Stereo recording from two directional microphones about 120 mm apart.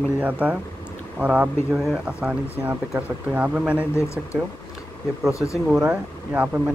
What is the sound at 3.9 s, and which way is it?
Speech, 25° left (ahead or behind).